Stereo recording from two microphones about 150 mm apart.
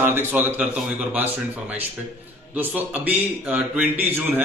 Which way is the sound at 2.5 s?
10° right (ahead or behind).